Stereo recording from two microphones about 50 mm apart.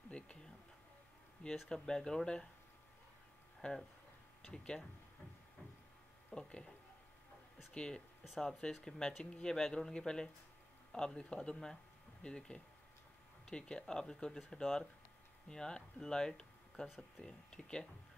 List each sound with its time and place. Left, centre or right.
0.1 s a sound: left
1.7 s speech: centre
3.6 s speech: centre
6.3 s speech: centre
7.7 s speech: centre
8.2 s speech: centre
8.8 s speech: centre